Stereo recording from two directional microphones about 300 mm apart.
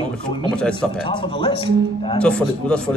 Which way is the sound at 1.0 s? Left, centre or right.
Centre.